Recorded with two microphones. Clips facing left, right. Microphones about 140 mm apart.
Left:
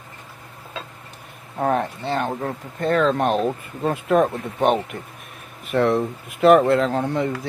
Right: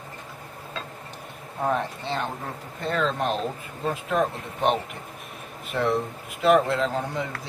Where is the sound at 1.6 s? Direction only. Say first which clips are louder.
Left 4 dB; 50° left (ahead or behind).